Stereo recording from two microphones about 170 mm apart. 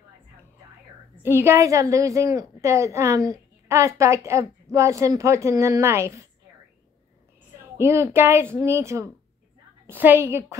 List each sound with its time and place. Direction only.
1.2 s a woman's voice: 15° right (ahead or behind)
7.7 s a woman's voice: 15° right (ahead or behind)